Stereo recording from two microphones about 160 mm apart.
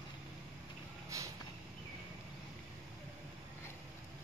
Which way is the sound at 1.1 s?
20° right (ahead or behind).